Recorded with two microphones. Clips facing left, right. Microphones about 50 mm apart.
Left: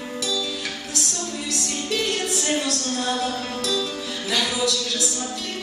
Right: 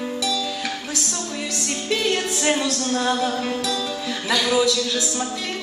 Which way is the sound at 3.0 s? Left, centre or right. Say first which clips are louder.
Right 3 dB; right.